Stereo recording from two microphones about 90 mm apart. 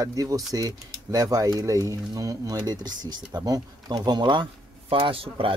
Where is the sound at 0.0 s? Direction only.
40° right (ahead or behind).